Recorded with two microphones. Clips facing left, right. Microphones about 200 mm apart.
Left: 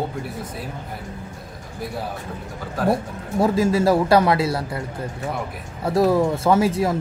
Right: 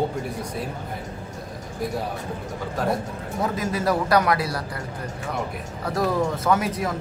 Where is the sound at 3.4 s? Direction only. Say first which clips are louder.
Left 7 dB; 30° left (ahead or behind).